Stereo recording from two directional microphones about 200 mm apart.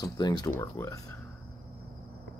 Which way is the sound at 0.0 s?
20° left (ahead or behind).